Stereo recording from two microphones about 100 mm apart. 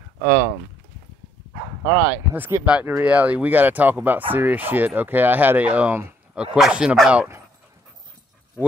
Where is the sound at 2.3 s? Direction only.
20° right (ahead or behind).